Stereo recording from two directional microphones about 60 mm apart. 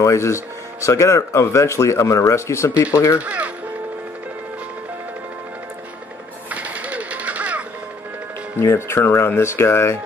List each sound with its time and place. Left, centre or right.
0.0 s speech: left
3.2 s speech: right
6.5 s a sound: right
8.7 s speech: left